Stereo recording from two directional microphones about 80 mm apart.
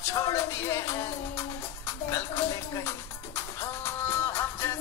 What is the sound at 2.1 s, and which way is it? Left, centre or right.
Music, left.